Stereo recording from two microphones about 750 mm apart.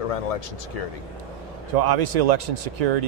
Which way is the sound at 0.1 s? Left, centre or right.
Left.